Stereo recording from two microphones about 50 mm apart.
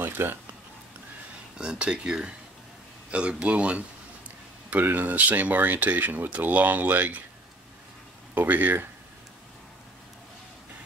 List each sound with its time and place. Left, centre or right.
0.0 s speech: right
1.6 s speech: centre
4.9 s speech: right
8.4 s speech: right